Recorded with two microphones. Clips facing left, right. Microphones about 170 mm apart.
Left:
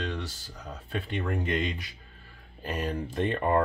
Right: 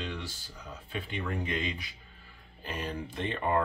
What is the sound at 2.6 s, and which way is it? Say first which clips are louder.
Speech: left 5 dB; 45° left (ahead or behind).